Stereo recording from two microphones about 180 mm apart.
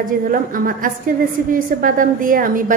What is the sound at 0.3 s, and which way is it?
A woman's voice, 50° right (ahead or behind).